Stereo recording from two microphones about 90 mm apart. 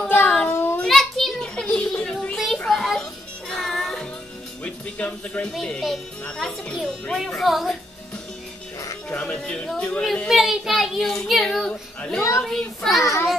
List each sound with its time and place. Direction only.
0.5 s child singing: 25° left (ahead or behind)
0.8 s children playing: 5° left (ahead or behind)
2.3 s music: centre (ahead or behind)
4.9 s speech: 15° left (ahead or behind)
5.5 s a child's voice: 5° left (ahead or behind)
9.1 s a child's voice: 10° left (ahead or behind)
12.2 s a woman's voice: 35° left (ahead or behind)
12.4 s a child's voice: 5° left (ahead or behind)
13.0 s a woman's voice: 35° left (ahead or behind)